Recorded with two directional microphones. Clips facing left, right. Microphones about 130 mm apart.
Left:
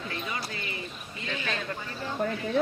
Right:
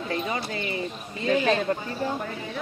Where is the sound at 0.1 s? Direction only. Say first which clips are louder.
Right 9 dB; 35° right (ahead or behind).